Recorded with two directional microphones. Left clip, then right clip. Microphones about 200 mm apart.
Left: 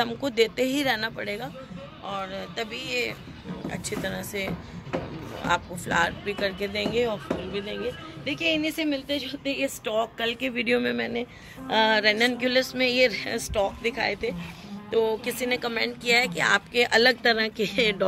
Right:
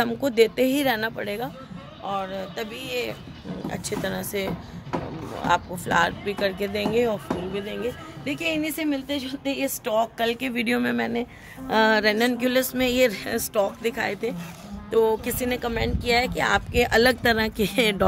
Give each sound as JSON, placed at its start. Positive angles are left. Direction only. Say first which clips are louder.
{"t": 0.0, "sound": "speech", "louder": "right 4 dB", "side_deg": -35}
{"t": 3.6, "sound": "speech", "louder": "right 2 dB", "side_deg": -25}
{"t": 11.7, "sound": "speech", "louder": "right 1 dB", "side_deg": -35}